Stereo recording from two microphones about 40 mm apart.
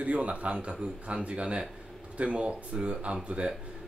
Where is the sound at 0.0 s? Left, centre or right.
Right.